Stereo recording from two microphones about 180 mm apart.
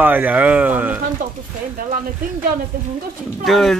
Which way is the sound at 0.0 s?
10° right (ahead or behind).